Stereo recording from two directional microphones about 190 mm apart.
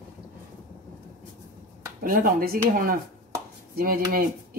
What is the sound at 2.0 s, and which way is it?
Speech, 45° right (ahead or behind).